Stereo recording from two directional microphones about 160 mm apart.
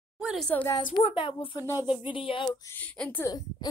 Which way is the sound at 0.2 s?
5° right (ahead or behind).